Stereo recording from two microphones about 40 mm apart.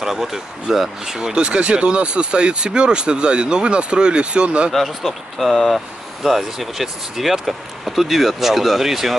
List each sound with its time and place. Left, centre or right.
0.0 s speech: centre; by 4.7 s right
4.7 s speech: centre